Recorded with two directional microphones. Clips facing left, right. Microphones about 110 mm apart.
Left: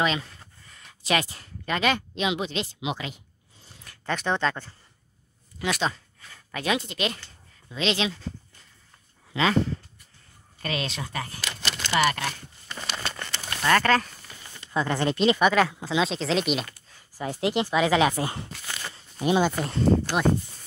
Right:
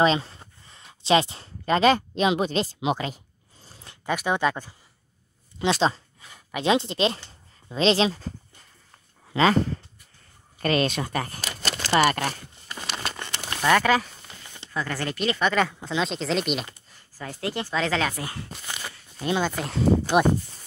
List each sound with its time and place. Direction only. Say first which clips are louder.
0.0 s speech: right 5 dB; 30° right (ahead or behind)
4.0 s speech: right 2 dB; 10° right (ahead or behind)
5.6 s speech: right 5 dB; 30° right (ahead or behind)
6.2 s speech: right 5 dB; 15° right (ahead or behind); by 8.3 s 35° right (ahead or behind)
9.3 s speech: right 3 dB; 40° right (ahead or behind)
10.6 s speech: right 8 dB; 50° right (ahead or behind)
12.7 s crumpling: right 1 dB; 10° right (ahead or behind)
14.7 s speech: left 4 dB; 20° left (ahead or behind)
15.4 s speech: left 2 dB; centre (ahead or behind)
17.2 s speech: left 5 dB; 20° left (ahead or behind)
18.1 s speech: left 5 dB; 25° left (ahead or behind)
19.1 s speech: left 3 dB; 15° left (ahead or behind)
19.5 s speech: even; centre (ahead or behind)
20.2 s speech: right 2 dB; 20° right (ahead or behind)